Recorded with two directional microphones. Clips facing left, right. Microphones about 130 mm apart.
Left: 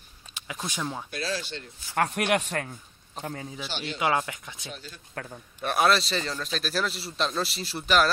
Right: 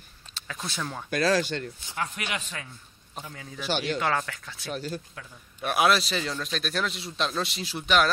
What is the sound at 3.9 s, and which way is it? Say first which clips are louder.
Speech: left 1 dB; 15° left (ahead or behind).